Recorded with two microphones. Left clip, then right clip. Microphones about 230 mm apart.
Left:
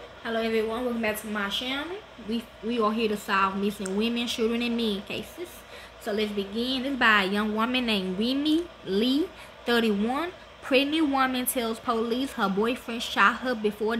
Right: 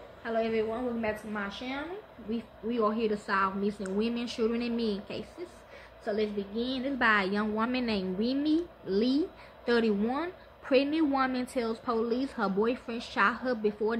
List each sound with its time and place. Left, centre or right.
0.2 s speech: centre
3.1 s a woman's voice: centre